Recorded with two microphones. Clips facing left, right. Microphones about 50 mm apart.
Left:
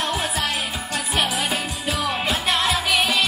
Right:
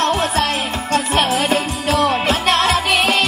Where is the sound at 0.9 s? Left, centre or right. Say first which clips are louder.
Right 7 dB; right.